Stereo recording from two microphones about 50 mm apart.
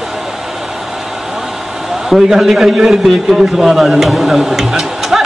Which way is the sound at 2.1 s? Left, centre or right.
Centre.